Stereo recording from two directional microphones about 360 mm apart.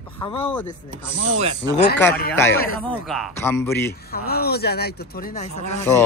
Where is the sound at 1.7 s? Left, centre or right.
Left.